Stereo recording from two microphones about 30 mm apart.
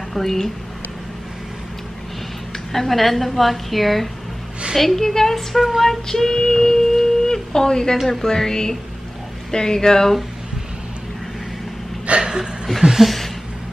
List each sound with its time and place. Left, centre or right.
0.1 s speech: centre
2.7 s a woman's voice: centre
5.8 s child singing: centre
8.1 s speech: centre
12.1 s a sound: right
12.8 s speech: right